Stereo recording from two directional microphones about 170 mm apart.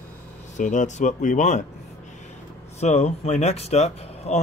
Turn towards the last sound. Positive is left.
turn(degrees=40)  # may be behind; listen again after turning